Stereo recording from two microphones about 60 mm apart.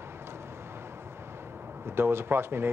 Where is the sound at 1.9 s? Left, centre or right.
Right.